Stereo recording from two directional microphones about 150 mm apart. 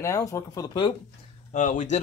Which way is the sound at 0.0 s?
20° left (ahead or behind).